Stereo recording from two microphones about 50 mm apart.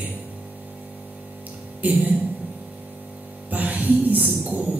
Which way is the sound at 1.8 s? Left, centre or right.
Right.